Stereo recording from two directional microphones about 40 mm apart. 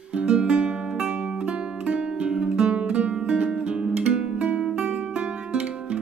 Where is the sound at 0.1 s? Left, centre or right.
Right.